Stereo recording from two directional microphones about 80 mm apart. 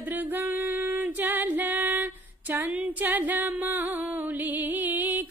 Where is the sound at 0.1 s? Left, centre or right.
Right.